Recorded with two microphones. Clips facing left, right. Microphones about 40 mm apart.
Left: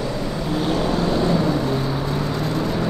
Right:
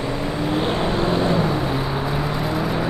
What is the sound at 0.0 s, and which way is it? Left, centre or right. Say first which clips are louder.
Vehicle: right 2 dB; right.